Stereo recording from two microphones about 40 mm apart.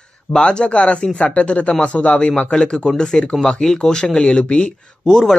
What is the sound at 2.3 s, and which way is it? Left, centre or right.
A man's voice, centre.